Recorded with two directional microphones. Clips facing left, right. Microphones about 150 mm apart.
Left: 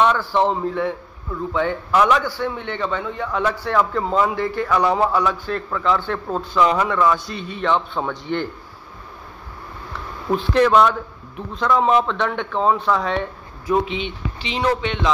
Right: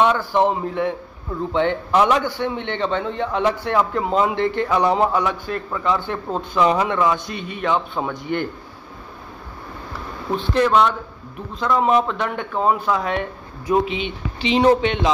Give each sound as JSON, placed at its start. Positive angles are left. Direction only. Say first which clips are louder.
{"t": 0.0, "sound": "a man's voice", "louder": "right 1 dB", "side_deg": -15}
{"t": 10.3, "sound": "speech", "louder": "left 2 dB", "side_deg": 0}
{"t": 14.6, "sound": "a man's voice", "louder": "right 5 dB", "side_deg": -20}